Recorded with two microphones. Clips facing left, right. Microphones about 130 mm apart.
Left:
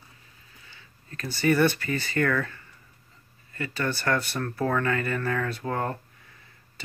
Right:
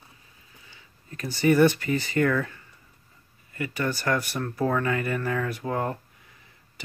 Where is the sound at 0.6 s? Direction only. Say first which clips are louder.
Right 2 dB; 15° right (ahead or behind).